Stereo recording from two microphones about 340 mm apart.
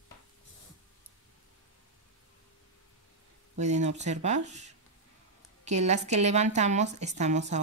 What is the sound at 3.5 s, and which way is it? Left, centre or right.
A woman's voice, centre.